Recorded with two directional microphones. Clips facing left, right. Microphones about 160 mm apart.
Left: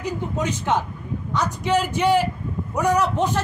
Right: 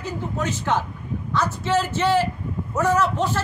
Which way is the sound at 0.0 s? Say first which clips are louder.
Left 2 dB; 15° left (ahead or behind).